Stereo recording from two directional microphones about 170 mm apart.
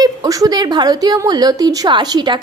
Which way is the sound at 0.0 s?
20° right (ahead or behind).